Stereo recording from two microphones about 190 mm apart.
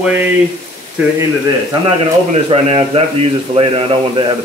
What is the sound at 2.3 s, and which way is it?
Speech, 30° right (ahead or behind).